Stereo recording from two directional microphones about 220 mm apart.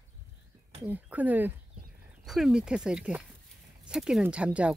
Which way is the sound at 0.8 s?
5° right (ahead or behind).